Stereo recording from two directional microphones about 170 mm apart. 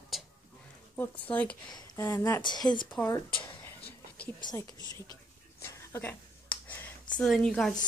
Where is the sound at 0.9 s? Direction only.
10° left (ahead or behind).